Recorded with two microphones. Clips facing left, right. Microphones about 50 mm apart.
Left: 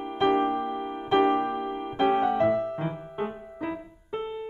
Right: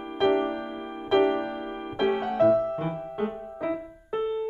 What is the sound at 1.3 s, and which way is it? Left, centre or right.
Music, left.